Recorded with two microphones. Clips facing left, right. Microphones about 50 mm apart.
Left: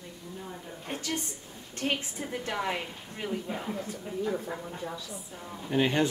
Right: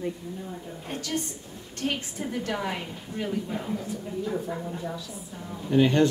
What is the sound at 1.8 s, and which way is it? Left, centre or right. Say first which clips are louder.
Speech: right 1 dB; left.